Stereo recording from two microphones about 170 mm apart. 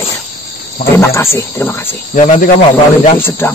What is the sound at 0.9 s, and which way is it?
Cricket, 15° left (ahead or behind).